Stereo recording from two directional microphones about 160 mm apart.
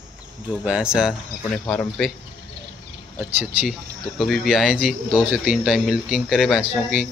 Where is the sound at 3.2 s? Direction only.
10° right (ahead or behind).